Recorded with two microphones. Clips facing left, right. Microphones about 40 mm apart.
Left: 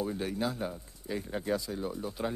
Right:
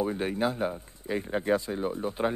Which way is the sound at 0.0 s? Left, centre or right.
Right.